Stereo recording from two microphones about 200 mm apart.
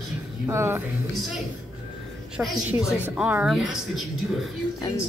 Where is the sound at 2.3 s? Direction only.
5° right (ahead or behind).